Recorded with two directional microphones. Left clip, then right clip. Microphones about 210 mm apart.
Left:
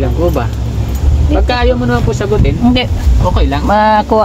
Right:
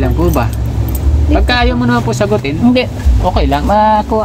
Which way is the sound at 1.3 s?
50° right (ahead or behind).